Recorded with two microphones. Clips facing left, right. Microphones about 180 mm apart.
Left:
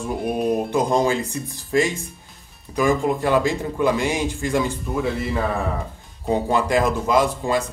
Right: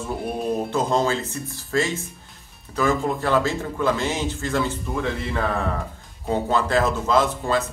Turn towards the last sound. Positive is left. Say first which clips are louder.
# left 1 dB
turn(degrees=15)  # may be behind; listen again after turning